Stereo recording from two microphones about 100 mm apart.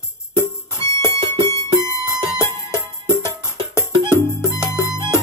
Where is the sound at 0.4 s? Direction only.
25° left (ahead or behind).